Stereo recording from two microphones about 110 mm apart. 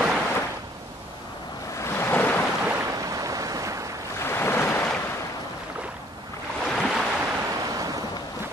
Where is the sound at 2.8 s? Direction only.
30° right (ahead or behind).